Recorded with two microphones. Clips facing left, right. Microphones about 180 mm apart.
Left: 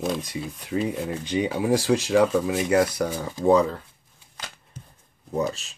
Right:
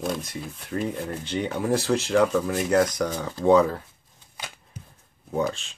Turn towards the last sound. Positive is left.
turn(degrees=5)  # may be behind; listen again after turning